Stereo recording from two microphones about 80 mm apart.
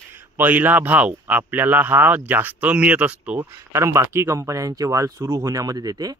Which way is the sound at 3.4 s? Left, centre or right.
Right.